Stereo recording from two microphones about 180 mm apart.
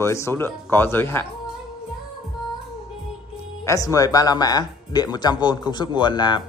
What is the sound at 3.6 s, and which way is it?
Speech, 20° left (ahead or behind).